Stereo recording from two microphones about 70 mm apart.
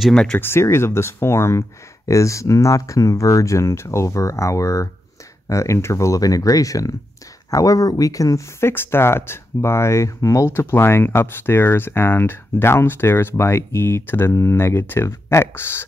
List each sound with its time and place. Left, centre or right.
0.1 s speech: centre
0.4 s speech: left
8.5 s speech: left